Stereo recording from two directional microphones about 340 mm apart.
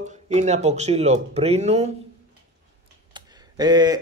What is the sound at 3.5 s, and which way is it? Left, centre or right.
Speech, centre.